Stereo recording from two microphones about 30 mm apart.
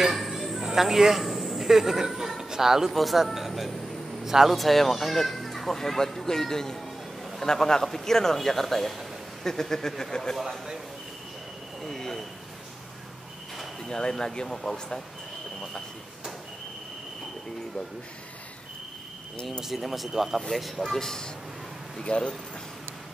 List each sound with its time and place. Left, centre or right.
0.3 s a sound: centre
0.7 s a man's voice: centre
2.9 s speech: centre
3.3 s music: centre
4.2 s speech: centre
4.5 s speech: centre
13.8 s speech: left
19.6 s speech: centre
20.8 s speech: centre
21.9 s speech: left